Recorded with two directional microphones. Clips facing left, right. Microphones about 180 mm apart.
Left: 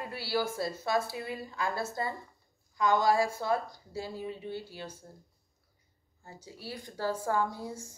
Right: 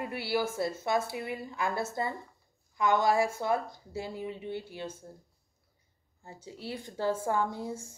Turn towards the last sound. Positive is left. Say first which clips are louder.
# right 1 dB
turn(degrees=-25)  # may be behind; listen again after turning